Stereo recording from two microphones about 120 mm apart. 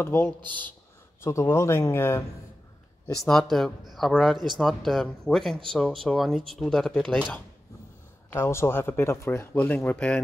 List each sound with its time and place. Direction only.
0.0 s speech: 20° left (ahead or behind)
3.3 s a man's voice: 5° left (ahead or behind)
8.3 s a man's voice: 20° left (ahead or behind)